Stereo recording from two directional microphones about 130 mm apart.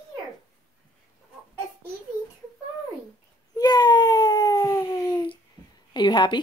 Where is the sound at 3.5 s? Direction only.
30° left (ahead or behind).